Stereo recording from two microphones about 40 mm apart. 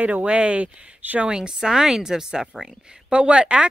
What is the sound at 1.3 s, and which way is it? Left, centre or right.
Speech, centre.